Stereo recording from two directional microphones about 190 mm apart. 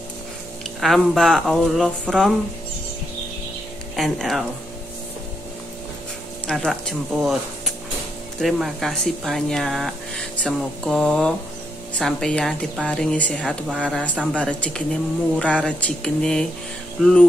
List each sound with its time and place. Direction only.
0.7 s speech: centre (ahead or behind)
3.9 s speech: centre (ahead or behind)
6.4 s speech: centre (ahead or behind)